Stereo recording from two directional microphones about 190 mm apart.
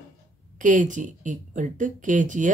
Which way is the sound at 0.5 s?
40° right (ahead or behind).